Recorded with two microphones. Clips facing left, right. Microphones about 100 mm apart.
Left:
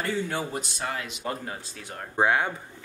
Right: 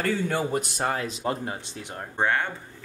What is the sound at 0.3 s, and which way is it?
Speech, 50° right (ahead or behind).